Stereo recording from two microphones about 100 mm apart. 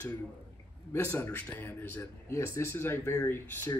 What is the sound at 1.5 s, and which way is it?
A man's voice, 20° left (ahead or behind).